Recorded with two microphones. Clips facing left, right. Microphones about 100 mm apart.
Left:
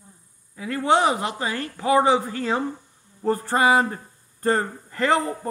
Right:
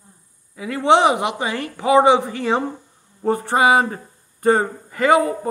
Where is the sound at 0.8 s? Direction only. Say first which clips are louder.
Right 5 dB; 90° right.